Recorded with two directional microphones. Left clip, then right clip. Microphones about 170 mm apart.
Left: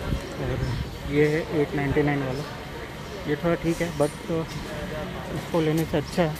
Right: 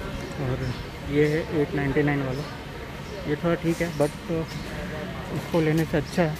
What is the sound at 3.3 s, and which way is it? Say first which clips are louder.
Speech: even; 5° left (ahead or behind).